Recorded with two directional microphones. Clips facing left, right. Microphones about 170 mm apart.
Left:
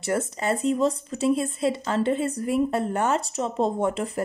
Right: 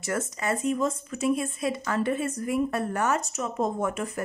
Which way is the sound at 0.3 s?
30° left (ahead or behind).